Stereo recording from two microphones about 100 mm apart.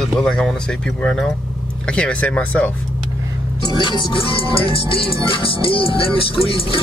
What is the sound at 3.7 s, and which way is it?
Speech, 50° left (ahead or behind).